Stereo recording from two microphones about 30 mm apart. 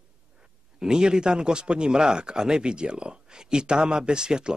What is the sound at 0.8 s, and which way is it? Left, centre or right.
Speech, right.